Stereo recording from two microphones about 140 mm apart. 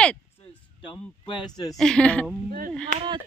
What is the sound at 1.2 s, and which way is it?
Speech, 30° left (ahead or behind).